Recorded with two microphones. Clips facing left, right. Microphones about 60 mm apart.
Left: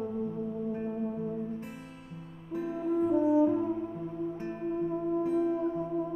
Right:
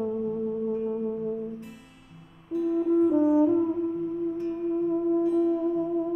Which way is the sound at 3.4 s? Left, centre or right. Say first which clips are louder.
Right 4 dB; centre.